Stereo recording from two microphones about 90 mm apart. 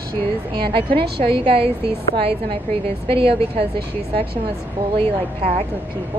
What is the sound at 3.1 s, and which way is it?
Speech, 90° right.